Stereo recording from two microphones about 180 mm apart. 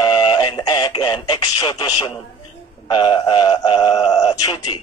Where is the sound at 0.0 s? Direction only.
25° left (ahead or behind).